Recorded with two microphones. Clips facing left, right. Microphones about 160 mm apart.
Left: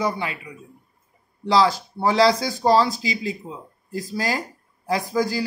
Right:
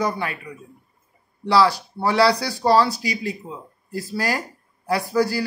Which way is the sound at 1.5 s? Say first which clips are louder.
Right 1 dB; 20° left (ahead or behind).